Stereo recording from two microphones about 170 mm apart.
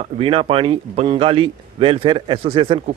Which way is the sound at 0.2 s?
35° right (ahead or behind).